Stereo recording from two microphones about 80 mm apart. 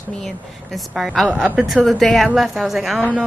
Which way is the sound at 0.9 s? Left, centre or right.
Centre.